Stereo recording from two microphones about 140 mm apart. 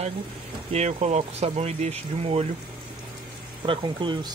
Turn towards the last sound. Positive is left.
turn(degrees=-35)  # may be behind; listen again after turning